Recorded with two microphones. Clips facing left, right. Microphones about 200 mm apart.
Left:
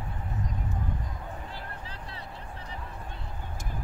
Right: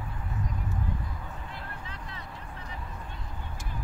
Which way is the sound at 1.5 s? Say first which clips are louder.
Left 1 dB; 35° left (ahead or behind).